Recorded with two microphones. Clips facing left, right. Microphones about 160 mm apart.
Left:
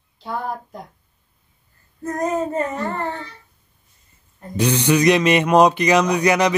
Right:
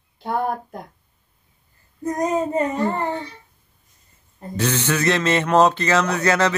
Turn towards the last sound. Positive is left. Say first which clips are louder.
# left 2 dB
turn(degrees=15)  # may be behind; listen again after turning